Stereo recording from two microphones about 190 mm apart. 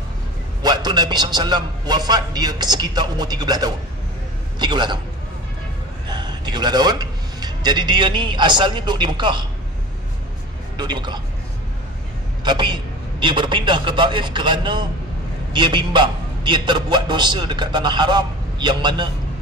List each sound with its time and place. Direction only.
0.6 s a man's voice: 20° right (ahead or behind)
6.0 s speech: 25° right (ahead or behind)
10.8 s a man's voice: 25° right (ahead or behind)
12.4 s a man's voice: 25° right (ahead or behind)